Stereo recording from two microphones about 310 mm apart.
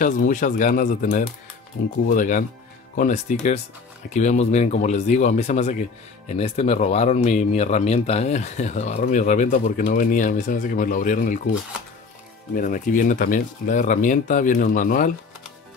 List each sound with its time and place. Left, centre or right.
0.0 s speech: left
12.5 s speech: left